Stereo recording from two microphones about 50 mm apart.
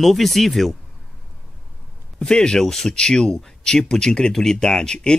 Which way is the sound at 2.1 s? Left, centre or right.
Centre.